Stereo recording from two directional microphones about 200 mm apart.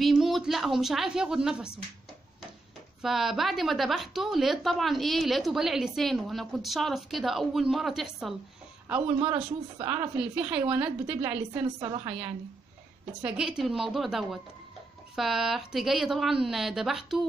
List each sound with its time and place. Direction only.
0.0 s a woman's voice: centre (ahead or behind)
3.0 s a woman's voice: centre (ahead or behind)
9.2 s speech: 30° right (ahead or behind)
9.8 s a woman's voice: 5° right (ahead or behind)
11.8 s speech: 20° right (ahead or behind)
13.2 s a woman's voice: 5° right (ahead or behind)